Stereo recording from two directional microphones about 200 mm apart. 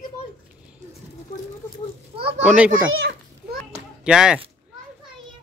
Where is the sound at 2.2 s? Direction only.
30° right (ahead or behind).